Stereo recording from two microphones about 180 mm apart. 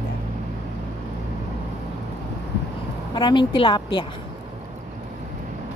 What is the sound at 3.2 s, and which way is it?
Speech, 25° left (ahead or behind).